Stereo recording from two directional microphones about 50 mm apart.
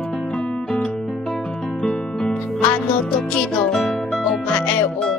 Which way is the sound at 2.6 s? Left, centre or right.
Left.